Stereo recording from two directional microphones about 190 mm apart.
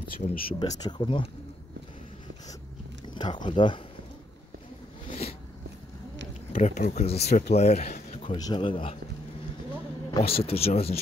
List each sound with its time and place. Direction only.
0.2 s speech: 45° left (ahead or behind)
0.6 s speech: 20° left (ahead or behind)
3.2 s speech: 25° left (ahead or behind)
6.5 s speech: 40° left (ahead or behind)
8.2 s speech: 25° left (ahead or behind)
10.1 s speech: 30° left (ahead or behind)